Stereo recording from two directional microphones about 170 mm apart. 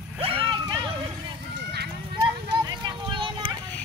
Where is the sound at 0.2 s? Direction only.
30° right (ahead or behind).